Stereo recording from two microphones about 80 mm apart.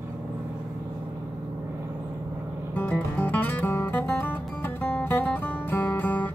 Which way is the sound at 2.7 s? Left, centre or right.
Left.